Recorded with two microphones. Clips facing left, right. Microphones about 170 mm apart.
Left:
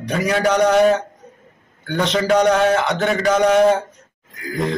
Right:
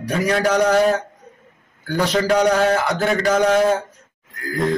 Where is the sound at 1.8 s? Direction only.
5° right (ahead or behind).